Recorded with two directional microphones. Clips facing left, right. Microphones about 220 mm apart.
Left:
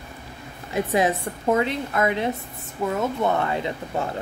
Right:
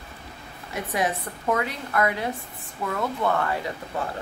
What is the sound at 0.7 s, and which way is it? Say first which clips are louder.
A woman's voice: left 5 dB; 25° left (ahead or behind).